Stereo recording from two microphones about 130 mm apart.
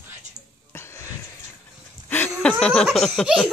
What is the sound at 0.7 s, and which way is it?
Wheeze, 20° left (ahead or behind).